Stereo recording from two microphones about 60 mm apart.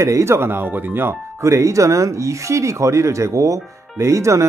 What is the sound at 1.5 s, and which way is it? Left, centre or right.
Speech, right.